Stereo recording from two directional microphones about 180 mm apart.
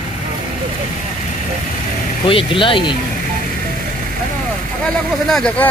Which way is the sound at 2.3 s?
30° left (ahead or behind).